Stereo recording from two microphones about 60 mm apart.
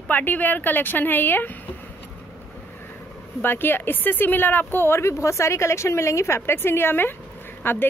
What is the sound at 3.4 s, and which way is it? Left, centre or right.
A woman's voice, left.